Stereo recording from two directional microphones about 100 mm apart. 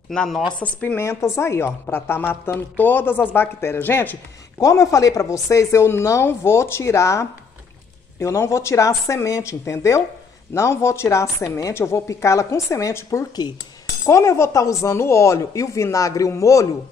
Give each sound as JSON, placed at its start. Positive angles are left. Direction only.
{"t": 0.1, "sound": "speech", "side_deg": 10}
{"t": 0.9, "sound": "a woman's voice", "side_deg": 25}
{"t": 4.6, "sound": "a woman's voice", "side_deg": 35}
{"t": 13.4, "sound": "cutlery", "side_deg": 45}
{"t": 14.0, "sound": "speech", "side_deg": 30}